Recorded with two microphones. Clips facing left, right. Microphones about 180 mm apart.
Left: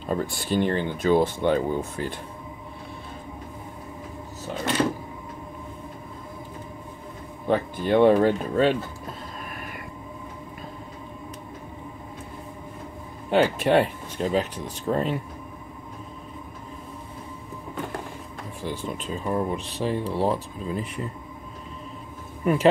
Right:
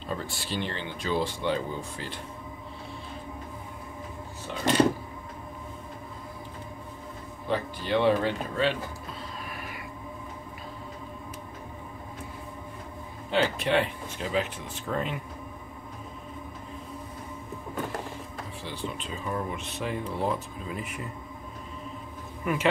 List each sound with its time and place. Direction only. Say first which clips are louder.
0.1 s speech: left 8 dB; 50° left (ahead or behind)
7.4 s speech: left 6 dB; 50° left (ahead or behind)
13.3 s speech: left 6 dB; 50° left (ahead or behind)
18.6 s speech: left 5 dB; 50° left (ahead or behind); by 21.1 s 30° left (ahead or behind)
22.4 s speech: left 6 dB; 35° left (ahead or behind)